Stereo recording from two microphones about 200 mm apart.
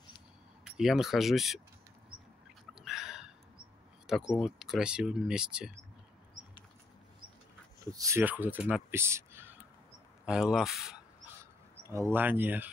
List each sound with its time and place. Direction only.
0.7 s speech: centre (ahead or behind)
2.8 s a sound: centre (ahead or behind)
4.1 s speech: centre (ahead or behind)
7.8 s speech: 15° right (ahead or behind)
11.8 s speech: 15° right (ahead or behind)